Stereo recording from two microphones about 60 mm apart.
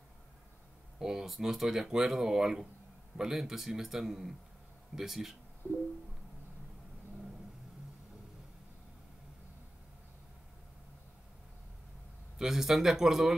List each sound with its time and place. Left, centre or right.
0.9 s speech: centre
5.6 s music: left
12.4 s speech: centre